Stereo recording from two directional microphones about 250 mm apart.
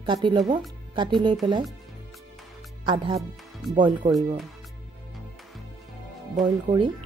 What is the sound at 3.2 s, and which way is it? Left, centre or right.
Speech, centre.